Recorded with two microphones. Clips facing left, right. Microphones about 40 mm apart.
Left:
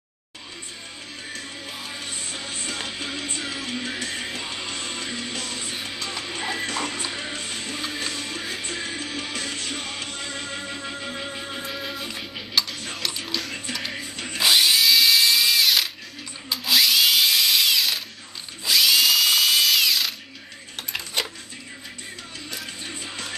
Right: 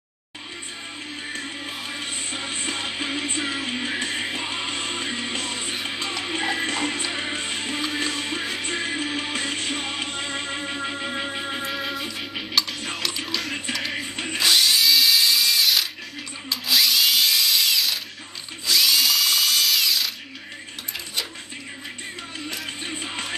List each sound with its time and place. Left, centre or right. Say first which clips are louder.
2.0 s music: right 3 dB; right
11.7 s music: right 3 dB; centre
14.1 s drill: right 4 dB; right
14.4 s drill: left 1 dB; centre
14.8 s drill: left 1 dB; centre
20.9 s dishes: left 3 dB; centre
23.0 s music: right 3 dB; right